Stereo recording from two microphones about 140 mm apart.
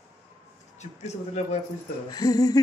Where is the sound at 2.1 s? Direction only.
25° left (ahead or behind).